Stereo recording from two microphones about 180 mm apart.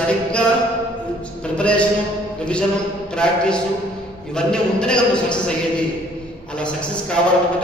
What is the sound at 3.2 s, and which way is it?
A man's voice, 5° left (ahead or behind).